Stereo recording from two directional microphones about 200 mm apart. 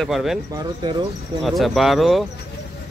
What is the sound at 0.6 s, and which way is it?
Speech, 20° right (ahead or behind).